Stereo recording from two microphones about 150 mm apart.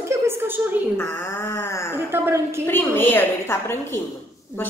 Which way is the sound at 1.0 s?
15° left (ahead or behind).